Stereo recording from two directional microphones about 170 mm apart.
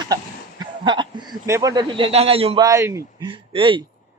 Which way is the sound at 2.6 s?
20° right (ahead or behind).